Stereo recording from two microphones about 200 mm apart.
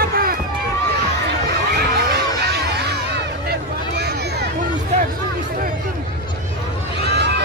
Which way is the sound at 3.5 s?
55° right (ahead or behind).